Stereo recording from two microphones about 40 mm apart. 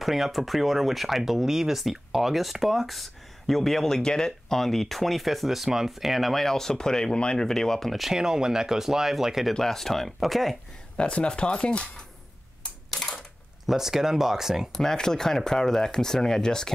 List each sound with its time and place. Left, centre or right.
0.0 s speech: centre
6.3 s speech: centre
8.1 s speech: centre
9.5 s speech: centre
11.0 s speech: left
12.6 s camera: left
13.7 s speech: centre
14.7 s speech: centre